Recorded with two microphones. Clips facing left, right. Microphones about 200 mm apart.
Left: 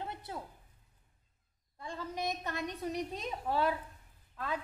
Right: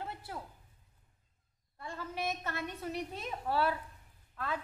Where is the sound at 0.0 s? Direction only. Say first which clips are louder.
Left 1 dB; 20° left (ahead or behind).